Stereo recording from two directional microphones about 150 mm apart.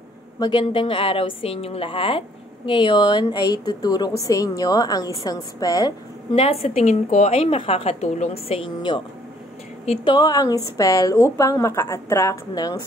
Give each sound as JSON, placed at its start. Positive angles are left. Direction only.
{"t": 0.4, "sound": "a woman's voice", "side_deg": 35}
{"t": 6.3, "sound": "a woman's voice", "side_deg": 40}